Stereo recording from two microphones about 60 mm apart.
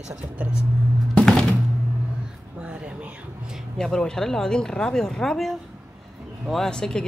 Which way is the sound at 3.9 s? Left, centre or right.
Centre.